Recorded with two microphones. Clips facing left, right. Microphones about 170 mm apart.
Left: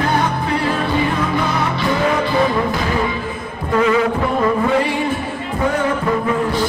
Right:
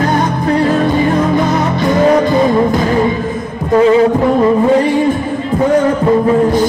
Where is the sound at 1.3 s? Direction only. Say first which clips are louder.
Right 6 dB; 40° right (ahead or behind).